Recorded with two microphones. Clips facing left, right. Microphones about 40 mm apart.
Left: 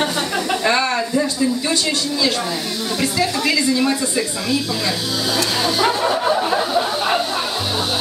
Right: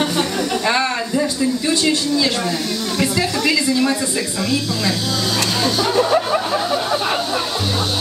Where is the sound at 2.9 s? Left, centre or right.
Centre.